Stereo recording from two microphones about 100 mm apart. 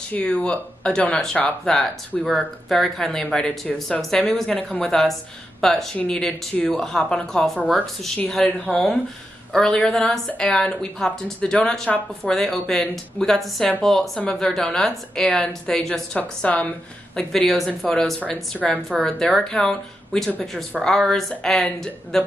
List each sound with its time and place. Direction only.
0.1 s speech: 15° left (ahead or behind)
8.5 s speech: 15° left (ahead or behind)
9.5 s speech: 5° left (ahead or behind)